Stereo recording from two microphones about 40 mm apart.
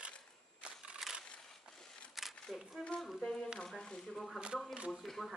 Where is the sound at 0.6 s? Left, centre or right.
Right.